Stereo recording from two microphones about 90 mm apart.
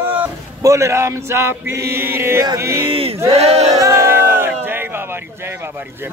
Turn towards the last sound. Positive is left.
turn(degrees=-25)  # may be behind; listen again after turning